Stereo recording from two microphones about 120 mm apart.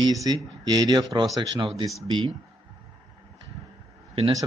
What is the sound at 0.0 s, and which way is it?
Speech, 30° right (ahead or behind).